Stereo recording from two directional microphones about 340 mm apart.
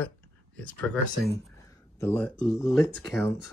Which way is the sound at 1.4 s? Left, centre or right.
Centre.